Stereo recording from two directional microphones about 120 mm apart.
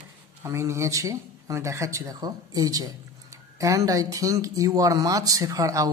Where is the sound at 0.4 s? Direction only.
25° right (ahead or behind).